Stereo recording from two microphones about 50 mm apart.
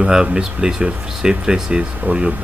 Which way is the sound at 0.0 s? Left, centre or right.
Centre.